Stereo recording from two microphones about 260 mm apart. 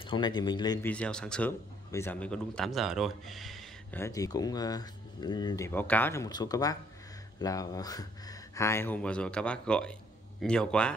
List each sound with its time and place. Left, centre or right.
0.0 s speech: centre
0.9 s speech: centre